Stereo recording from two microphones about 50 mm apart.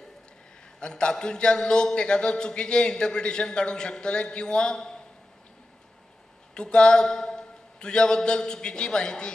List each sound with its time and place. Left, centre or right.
0.7 s a man's voice: centre
6.5 s a man's voice: centre